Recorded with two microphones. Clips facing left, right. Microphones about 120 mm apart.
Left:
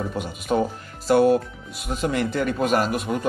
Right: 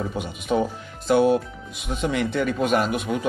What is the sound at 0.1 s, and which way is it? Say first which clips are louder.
A man's voice: even; centre (ahead or behind).